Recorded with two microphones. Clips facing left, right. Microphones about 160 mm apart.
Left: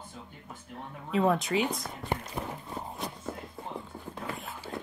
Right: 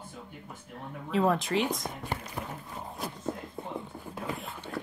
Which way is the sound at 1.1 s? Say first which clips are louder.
Even; centre (ahead or behind).